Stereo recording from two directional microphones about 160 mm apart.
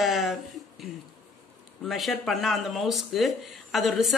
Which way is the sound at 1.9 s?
Centre (ahead or behind).